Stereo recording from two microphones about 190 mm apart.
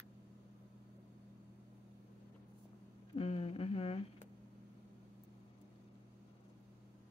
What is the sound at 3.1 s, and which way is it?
Humming, 30° left (ahead or behind).